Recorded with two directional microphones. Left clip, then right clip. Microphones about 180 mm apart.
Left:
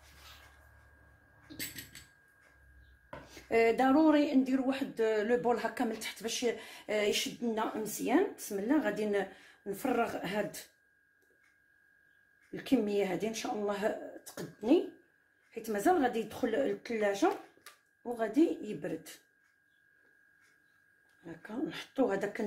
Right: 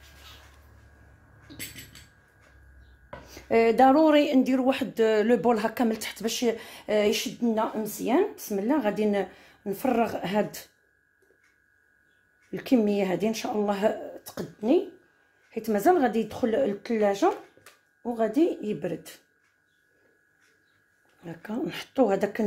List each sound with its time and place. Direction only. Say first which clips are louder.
3.3 s speech: right 6 dB; 40° right (ahead or behind)
12.4 s speech: right 7 dB; 50° right (ahead or behind)
21.2 s speech: right 6 dB; 55° right (ahead or behind)